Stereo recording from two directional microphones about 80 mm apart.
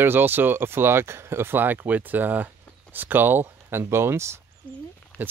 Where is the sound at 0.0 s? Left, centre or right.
Right.